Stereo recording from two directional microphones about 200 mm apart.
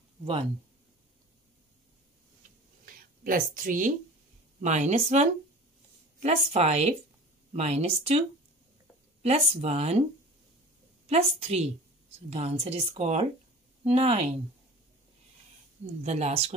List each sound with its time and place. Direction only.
2.8 s a sound: 45° right (ahead or behind)
4.6 s speech: 35° right (ahead or behind)
9.2 s speech: 30° right (ahead or behind)
11.1 s speech: 30° right (ahead or behind)
16.0 s speech: 35° right (ahead or behind)